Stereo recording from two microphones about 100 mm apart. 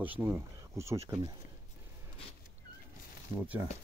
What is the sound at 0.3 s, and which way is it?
Speech, 30° right (ahead or behind).